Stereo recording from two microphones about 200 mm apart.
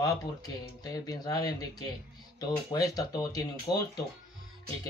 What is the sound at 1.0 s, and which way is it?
Speech, 20° left (ahead or behind).